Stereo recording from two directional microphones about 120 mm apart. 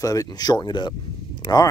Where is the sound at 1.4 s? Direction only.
35° left (ahead or behind).